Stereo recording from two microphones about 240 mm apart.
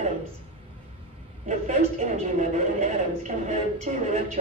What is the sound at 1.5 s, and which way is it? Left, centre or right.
Speech, right.